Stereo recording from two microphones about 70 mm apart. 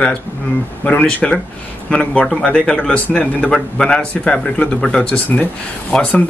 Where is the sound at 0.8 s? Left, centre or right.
Centre.